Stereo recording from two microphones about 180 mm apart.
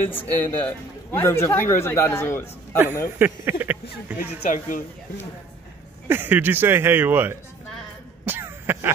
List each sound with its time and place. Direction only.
0.1 s a man's voice: 10° left (ahead or behind)
3.2 s speech: 10° right (ahead or behind)
4.4 s speech: 45° left (ahead or behind)
6.0 s speech: 10° right (ahead or behind)
8.3 s throat clearing: 10° right (ahead or behind)